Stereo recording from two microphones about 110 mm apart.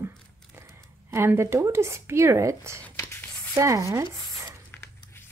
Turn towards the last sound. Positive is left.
turn(degrees=-25)  # may be behind; listen again after turning